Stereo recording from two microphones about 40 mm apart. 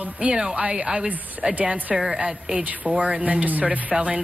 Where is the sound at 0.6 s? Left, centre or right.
Right.